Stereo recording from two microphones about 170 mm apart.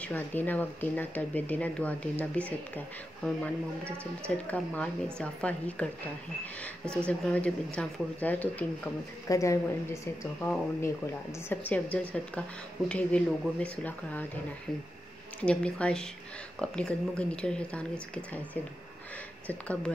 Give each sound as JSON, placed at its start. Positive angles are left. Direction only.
{"t": 0.0, "sound": "speech", "side_deg": 10}
{"t": 7.1, "sound": "a woman's voice", "side_deg": 5}
{"t": 10.4, "sound": "speech", "side_deg": 10}
{"t": 15.4, "sound": "speech", "side_deg": 5}